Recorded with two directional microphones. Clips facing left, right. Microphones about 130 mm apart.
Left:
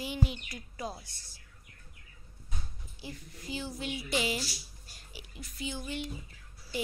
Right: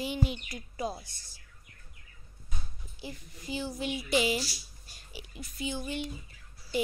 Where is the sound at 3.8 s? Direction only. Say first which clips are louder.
Right 5 dB; 15° right (ahead or behind).